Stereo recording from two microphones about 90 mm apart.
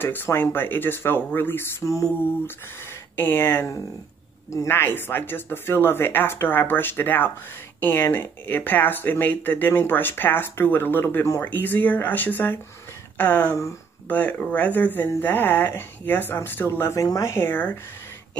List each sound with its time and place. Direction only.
0.0 s speech: 25° left (ahead or behind)